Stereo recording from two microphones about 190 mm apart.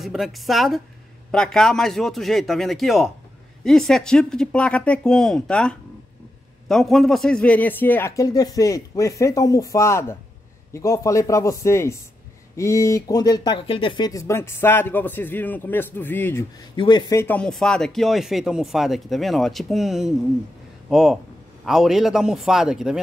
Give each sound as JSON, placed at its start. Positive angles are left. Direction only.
{"t": 0.0, "sound": "speech", "side_deg": 0}
{"t": 16.7, "sound": "speech", "side_deg": 25}
{"t": 17.1, "sound": "speech", "side_deg": 10}